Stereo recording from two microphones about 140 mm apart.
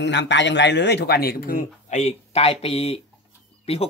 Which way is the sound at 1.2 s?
90° left.